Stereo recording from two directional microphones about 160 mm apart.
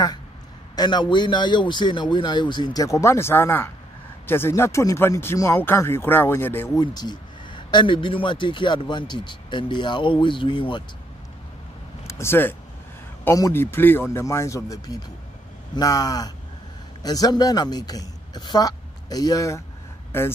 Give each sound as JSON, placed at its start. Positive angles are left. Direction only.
{"t": 0.7, "sound": "speech", "side_deg": 30}
{"t": 6.8, "sound": "speech", "side_deg": 25}
{"t": 12.1, "sound": "a man's voice", "side_deg": 15}